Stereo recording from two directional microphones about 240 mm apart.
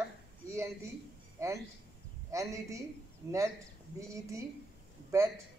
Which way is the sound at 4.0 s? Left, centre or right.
Centre.